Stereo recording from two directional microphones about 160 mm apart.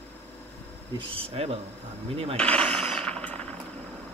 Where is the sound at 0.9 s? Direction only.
35° right (ahead or behind).